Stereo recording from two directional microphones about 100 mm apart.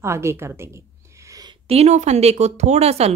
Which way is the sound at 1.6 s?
90° right.